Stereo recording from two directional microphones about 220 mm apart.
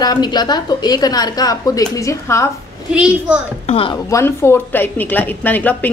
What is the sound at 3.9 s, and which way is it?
A woman's voice, 15° left (ahead or behind).